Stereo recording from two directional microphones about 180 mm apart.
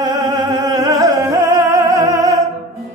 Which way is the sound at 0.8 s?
15° right (ahead or behind).